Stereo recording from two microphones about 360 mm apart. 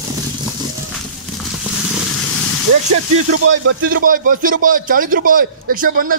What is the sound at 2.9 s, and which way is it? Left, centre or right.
Speech, right.